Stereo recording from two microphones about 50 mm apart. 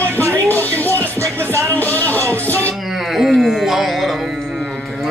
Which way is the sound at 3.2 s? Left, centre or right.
Centre.